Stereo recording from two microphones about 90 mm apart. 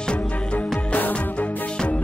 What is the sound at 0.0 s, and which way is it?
Music, 10° left (ahead or behind).